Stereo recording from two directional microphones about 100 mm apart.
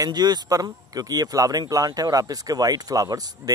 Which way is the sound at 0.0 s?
45° right (ahead or behind).